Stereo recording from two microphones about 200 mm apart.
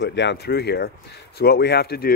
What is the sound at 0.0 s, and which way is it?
Speech, 60° left (ahead or behind).